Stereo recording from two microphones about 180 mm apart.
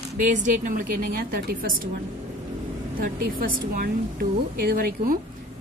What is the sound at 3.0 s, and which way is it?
A woman's voice, 50° right (ahead or behind).